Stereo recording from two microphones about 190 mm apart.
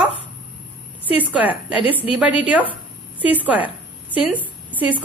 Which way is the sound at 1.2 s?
10° right (ahead or behind).